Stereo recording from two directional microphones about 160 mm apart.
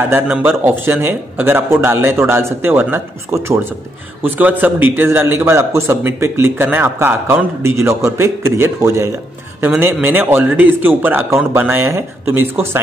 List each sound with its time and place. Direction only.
0.1 s a man's voice: 10° right (ahead or behind)